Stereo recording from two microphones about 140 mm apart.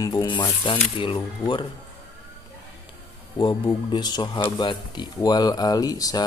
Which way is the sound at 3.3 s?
30° left (ahead or behind).